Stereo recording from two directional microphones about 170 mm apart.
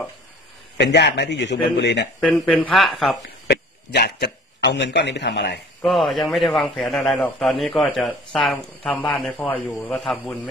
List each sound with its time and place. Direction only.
0.7 s a man's voice: 90° left
2.1 s a man's voice: 5° left (ahead or behind)
3.4 s a man's voice: 75° left (ahead or behind); by 5.6 s 90° left
5.8 s a man's voice: centre (ahead or behind)